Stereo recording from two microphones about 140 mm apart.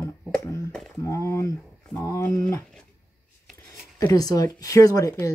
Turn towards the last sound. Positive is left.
turn(degrees=20)  # may be behind; listen again after turning